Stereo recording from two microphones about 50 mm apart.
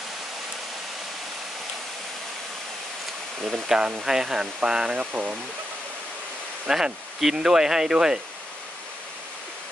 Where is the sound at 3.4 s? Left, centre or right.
Centre.